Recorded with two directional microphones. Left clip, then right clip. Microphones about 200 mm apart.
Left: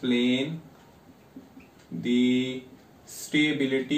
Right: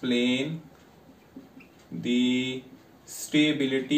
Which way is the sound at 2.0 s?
10° left (ahead or behind).